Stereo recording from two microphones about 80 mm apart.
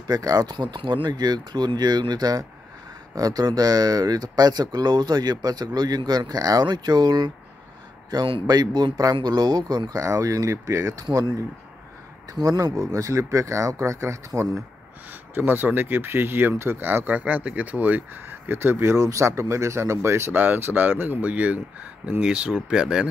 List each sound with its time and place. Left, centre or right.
0.0 s speech: right
12.4 s speech: right
15.3 s speech: right